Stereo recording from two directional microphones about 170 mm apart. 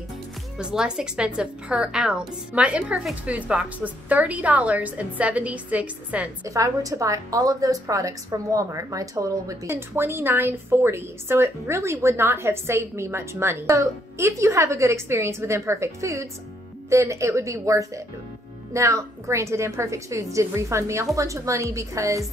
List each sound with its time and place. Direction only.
0.6 s a woman's voice: 5° right (ahead or behind)
6.4 s a woman's voice: 20° right (ahead or behind)